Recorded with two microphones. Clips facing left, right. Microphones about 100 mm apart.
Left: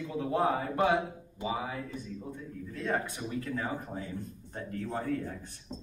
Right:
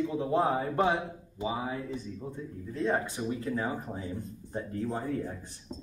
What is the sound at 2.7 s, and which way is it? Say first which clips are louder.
A man's voice: right 3 dB; 20° right (ahead or behind).